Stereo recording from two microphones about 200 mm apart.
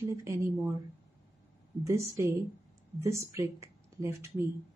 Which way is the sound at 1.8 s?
15° right (ahead or behind).